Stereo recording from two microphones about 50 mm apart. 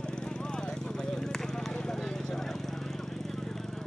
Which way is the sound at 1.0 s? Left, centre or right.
Centre.